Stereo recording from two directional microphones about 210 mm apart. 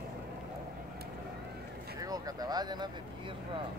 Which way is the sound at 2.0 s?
15° right (ahead or behind).